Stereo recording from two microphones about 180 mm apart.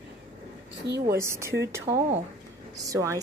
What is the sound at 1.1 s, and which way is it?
A woman's voice, 15° right (ahead or behind).